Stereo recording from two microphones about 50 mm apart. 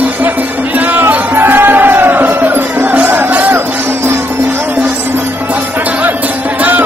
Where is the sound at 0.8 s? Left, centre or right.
Right.